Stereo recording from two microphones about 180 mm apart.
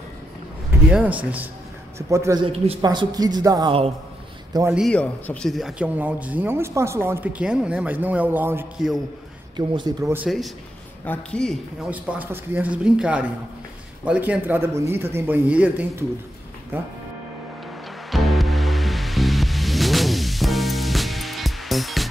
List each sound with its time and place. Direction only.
0.8 s speech: 5° right (ahead or behind)
2.4 s a man's voice: 35° right (ahead or behind)
2.8 s speech: 20° right (ahead or behind)
4.7 s speech: 5° left (ahead or behind)
9.6 s speech: 20° right (ahead or behind)
10.1 s speech: centre (ahead or behind)
11.9 s speech: 10° right (ahead or behind)
18.1 s music: centre (ahead or behind)